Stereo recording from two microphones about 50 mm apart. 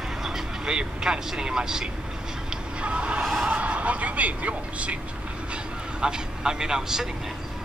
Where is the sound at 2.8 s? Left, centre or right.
Right.